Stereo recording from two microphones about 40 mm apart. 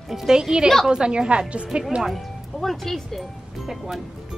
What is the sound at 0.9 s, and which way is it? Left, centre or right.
Speech, right.